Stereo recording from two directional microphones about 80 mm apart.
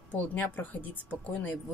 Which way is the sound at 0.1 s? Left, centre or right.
Left.